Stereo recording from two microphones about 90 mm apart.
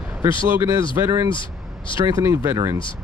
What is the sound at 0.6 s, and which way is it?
Speech, 35° right (ahead or behind).